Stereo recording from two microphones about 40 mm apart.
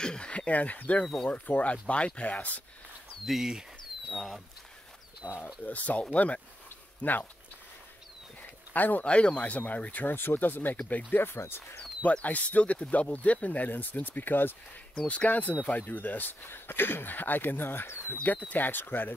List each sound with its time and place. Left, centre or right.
0.0 s speech: left
0.5 s speech: left
3.3 s speech: centre
5.4 s speech: left
7.0 s speech: left
8.7 s speech: left
9.0 s speech: left
10.0 s speech: left
10.9 s speech: left
11.1 s speech: left
12.0 s speech: left
13.7 s speech: left
15.0 s speech: left
18.5 s speech: left